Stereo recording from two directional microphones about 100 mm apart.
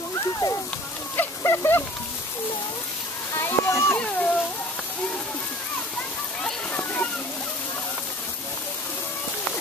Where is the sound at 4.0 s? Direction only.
10° left (ahead or behind).